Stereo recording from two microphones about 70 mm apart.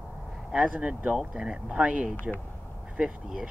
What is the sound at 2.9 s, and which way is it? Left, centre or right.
Speech, centre.